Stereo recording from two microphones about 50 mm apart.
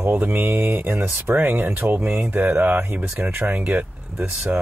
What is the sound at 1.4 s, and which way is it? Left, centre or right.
Speech, right.